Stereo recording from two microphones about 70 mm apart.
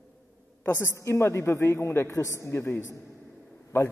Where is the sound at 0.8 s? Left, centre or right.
Left.